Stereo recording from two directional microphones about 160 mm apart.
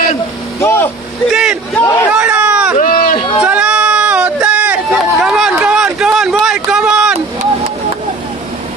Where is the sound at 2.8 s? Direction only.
60° left (ahead or behind).